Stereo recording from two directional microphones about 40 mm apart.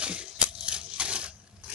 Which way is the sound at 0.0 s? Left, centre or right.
Right.